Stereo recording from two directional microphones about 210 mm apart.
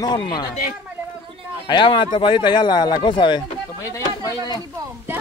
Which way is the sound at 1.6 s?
20° left (ahead or behind).